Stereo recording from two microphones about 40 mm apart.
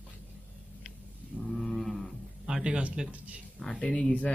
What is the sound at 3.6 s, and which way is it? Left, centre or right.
Speech, centre.